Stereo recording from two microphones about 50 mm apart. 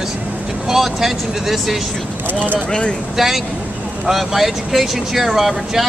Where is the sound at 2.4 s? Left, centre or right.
Left.